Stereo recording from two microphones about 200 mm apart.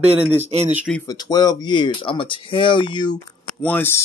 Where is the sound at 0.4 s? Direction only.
35° right (ahead or behind).